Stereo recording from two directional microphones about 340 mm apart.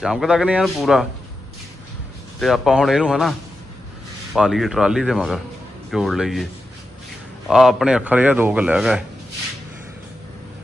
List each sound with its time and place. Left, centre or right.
0.0 s speech: centre
2.4 s speech: centre
7.4 s speech: centre